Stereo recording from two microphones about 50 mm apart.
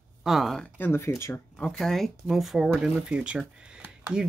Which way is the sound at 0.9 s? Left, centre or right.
Left.